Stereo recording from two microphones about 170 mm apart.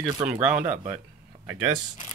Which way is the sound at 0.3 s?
5° right (ahead or behind).